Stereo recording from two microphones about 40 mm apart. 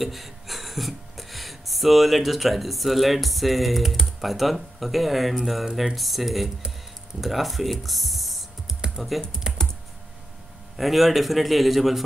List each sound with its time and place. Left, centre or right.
0.0 s speech: centre
9.5 s computer keyboard: centre
10.8 s speech: centre